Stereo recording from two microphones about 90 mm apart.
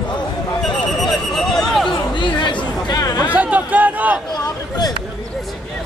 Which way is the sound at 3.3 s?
15° right (ahead or behind).